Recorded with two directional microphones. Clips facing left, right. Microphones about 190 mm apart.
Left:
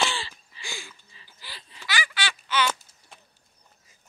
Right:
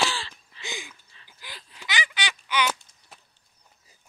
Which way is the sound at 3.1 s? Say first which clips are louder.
Even; 5° right (ahead or behind).